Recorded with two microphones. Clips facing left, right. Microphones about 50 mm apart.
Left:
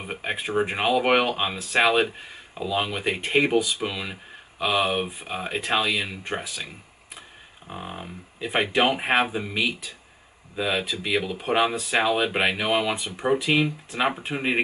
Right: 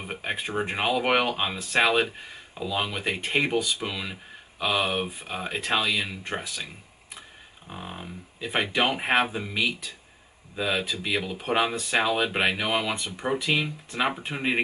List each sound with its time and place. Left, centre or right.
0.0 s speech: centre